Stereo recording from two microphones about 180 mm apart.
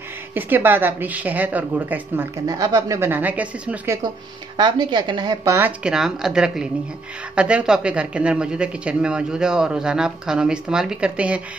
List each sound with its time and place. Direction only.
0.3 s a woman's voice: 10° right (ahead or behind)
4.6 s a woman's voice: 25° right (ahead or behind)
5.9 s speech: 5° right (ahead or behind)